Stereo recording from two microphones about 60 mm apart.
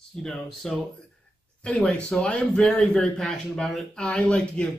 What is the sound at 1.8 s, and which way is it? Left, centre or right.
Speech, centre.